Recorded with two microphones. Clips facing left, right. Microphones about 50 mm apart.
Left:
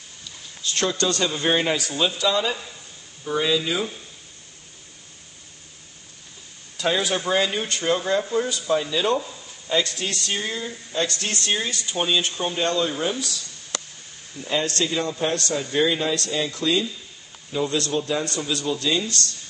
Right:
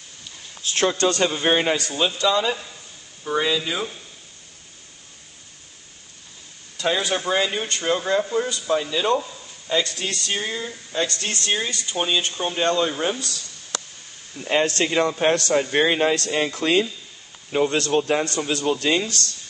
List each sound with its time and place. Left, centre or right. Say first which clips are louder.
0.8 s a man's voice: right 3 dB; right
2.1 s speech: right 2 dB; centre
6.8 s speech: even; centre
14.3 s a man's voice: right 2 dB; right
14.8 s a man's voice: right 4 dB; right